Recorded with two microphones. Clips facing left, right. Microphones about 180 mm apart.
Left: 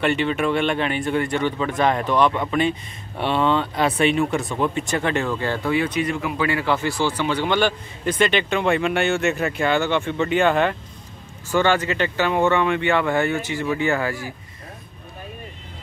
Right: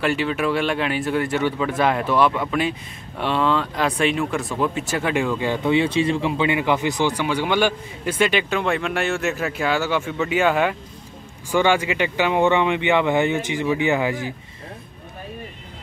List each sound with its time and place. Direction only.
0.0 s speech: centre (ahead or behind); by 14.3 s 20° right (ahead or behind)